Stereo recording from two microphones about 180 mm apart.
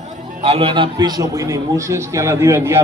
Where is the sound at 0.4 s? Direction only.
30° right (ahead or behind).